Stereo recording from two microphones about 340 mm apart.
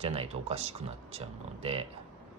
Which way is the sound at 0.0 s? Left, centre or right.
Centre.